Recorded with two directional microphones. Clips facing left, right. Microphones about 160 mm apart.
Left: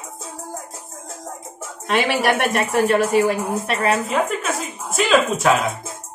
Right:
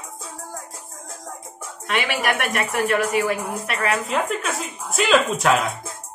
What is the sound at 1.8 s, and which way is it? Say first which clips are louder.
Speech: left 5 dB; 35° left (ahead or behind).